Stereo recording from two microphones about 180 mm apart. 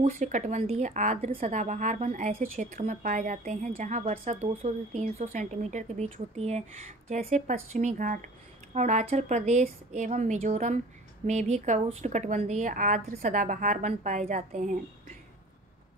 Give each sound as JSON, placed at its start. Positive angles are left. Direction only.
{"t": 0.0, "sound": "a woman's voice", "side_deg": -40}